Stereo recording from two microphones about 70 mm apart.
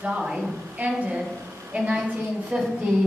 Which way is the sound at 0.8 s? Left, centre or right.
Right.